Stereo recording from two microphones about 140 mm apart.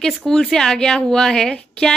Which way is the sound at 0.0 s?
5° left (ahead or behind).